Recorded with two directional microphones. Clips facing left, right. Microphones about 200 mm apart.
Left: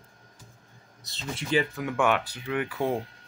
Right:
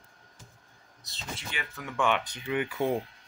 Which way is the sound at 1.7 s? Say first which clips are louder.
Left 3 dB; 10° left (ahead or behind).